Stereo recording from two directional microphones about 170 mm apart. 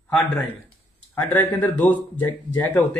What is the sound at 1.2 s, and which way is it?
Speech, 10° left (ahead or behind).